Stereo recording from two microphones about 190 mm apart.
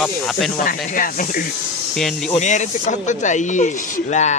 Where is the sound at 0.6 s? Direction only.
50° left (ahead or behind).